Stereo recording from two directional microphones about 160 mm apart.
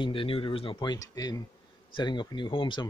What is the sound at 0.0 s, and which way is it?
Speech, 35° left (ahead or behind).